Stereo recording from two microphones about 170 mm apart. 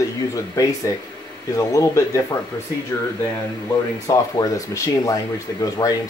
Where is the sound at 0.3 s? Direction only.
20° left (ahead or behind).